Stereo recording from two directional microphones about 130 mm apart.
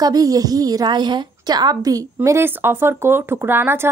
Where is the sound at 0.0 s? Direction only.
30° right (ahead or behind).